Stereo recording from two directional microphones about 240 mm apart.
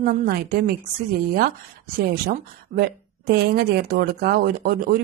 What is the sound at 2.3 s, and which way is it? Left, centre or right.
Speech, right.